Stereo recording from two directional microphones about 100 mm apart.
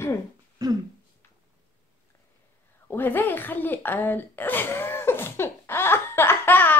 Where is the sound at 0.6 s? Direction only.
40° right (ahead or behind).